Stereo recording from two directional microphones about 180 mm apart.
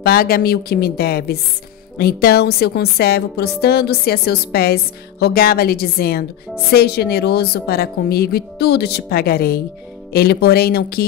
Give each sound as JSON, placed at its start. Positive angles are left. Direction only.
{"t": 0.0, "sound": "a woman's voice", "side_deg": 55}